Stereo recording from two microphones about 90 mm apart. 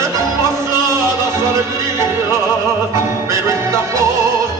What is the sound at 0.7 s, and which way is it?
Music, 35° right (ahead or behind).